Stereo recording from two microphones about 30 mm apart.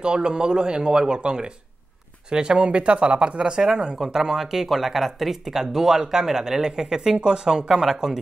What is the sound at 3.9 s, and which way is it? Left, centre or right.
Speech, centre.